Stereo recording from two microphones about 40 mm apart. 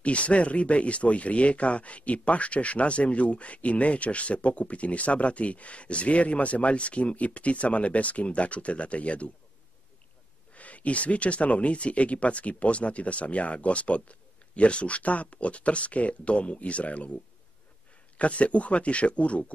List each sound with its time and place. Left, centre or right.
0.0 s speech: left
10.5 s speech: left